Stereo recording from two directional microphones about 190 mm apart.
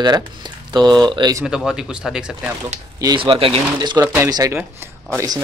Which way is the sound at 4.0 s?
10° right (ahead or behind).